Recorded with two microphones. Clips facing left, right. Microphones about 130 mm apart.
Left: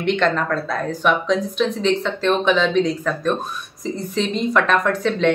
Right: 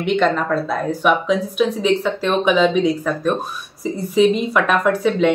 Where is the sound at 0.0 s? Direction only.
5° right (ahead or behind).